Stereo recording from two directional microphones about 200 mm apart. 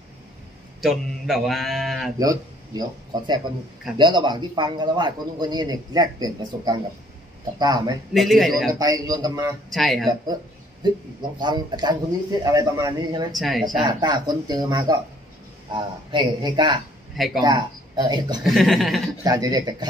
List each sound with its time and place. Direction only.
0.7 s a man's voice: centre (ahead or behind)
2.1 s speech: 20° right (ahead or behind)
4.0 s a man's voice: 25° right (ahead or behind)
8.1 s a man's voice: centre (ahead or behind)
8.7 s a man's voice: 20° right (ahead or behind)
9.7 s a man's voice: centre (ahead or behind)
11.3 s a man's voice: 20° right (ahead or behind)
13.3 s a man's voice: centre (ahead or behind)
13.8 s a man's voice: 20° right (ahead or behind)
18.4 s a man's voice: centre (ahead or behind)
19.2 s a man's voice: 20° right (ahead or behind)